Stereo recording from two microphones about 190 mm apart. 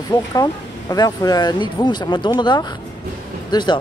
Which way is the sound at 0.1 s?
20° left (ahead or behind).